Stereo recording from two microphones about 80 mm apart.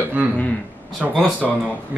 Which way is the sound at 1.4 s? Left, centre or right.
Centre.